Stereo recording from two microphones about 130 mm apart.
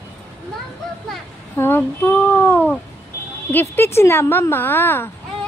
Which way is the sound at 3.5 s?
15° left (ahead or behind).